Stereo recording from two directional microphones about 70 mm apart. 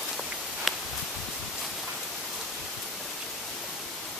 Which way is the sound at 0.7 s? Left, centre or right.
Centre.